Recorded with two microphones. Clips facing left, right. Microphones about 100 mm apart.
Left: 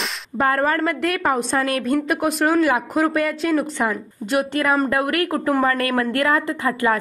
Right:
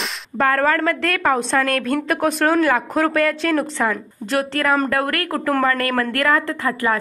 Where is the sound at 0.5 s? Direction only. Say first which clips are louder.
Right 2 dB; 15° left (ahead or behind).